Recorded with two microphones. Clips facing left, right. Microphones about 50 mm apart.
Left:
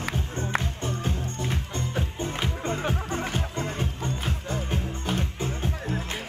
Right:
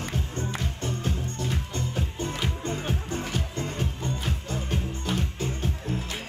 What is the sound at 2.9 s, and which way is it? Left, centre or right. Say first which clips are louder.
Music: left 2 dB; left.